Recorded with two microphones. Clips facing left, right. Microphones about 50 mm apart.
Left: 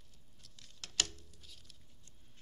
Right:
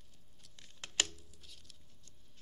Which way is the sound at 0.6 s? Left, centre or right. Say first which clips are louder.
Right 2 dB; right.